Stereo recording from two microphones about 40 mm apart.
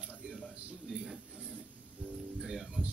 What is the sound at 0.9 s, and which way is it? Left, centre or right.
Speech, centre.